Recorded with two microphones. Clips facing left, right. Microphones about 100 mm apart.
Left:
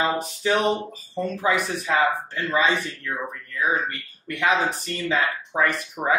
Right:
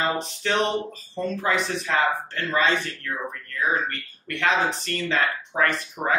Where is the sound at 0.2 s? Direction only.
5° left (ahead or behind).